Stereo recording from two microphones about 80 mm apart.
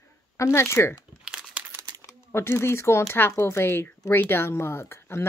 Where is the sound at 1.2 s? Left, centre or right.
Centre.